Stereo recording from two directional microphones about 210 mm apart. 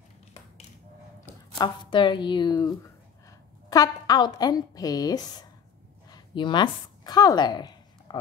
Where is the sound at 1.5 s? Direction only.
20° left (ahead or behind).